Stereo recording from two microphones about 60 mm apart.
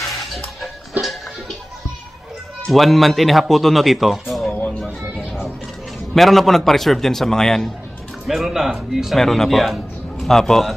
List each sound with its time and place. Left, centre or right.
0.2 s music: centre
2.7 s speech: centre
4.5 s a sound: left
6.1 s speech: centre
8.3 s speech: centre